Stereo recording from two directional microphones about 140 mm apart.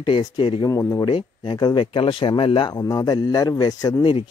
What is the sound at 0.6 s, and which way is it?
Speech, 20° left (ahead or behind).